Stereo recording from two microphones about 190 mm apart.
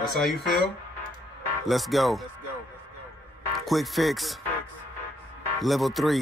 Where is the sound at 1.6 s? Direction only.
Centre (ahead or behind).